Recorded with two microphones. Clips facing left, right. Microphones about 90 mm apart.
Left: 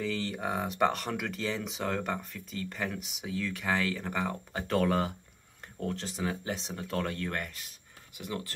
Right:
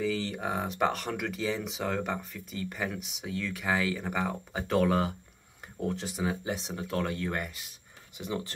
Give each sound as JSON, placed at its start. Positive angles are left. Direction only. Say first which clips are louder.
{"t": 0.0, "sound": "speech", "louder": "right 2 dB", "side_deg": 0}
{"t": 8.2, "sound": "speech", "louder": "right 3 dB", "side_deg": -20}